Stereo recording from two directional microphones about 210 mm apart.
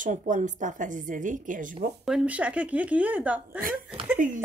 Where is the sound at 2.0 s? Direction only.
5° right (ahead or behind).